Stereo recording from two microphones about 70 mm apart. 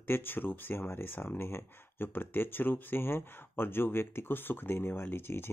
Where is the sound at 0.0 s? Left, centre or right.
Left.